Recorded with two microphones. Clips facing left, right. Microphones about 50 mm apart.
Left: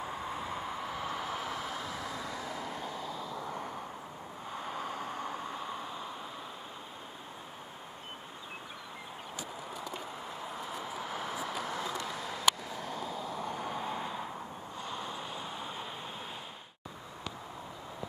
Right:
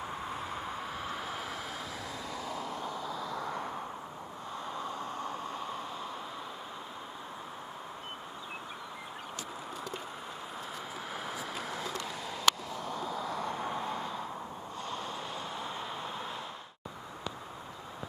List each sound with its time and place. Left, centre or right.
1.4 s vehicle: left; by 3.0 s centre
3.0 s vehicle: centre
4.6 s vehicle: centre
11.1 s vehicle: right
11.8 s a sound: centre
12.9 s vehicle: centre